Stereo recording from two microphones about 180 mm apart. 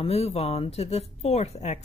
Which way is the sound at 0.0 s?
35° left (ahead or behind).